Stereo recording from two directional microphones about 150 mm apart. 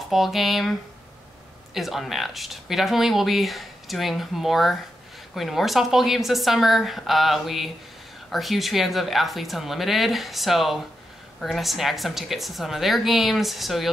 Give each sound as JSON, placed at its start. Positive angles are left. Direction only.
{"t": 0.1, "sound": "speech", "side_deg": 0}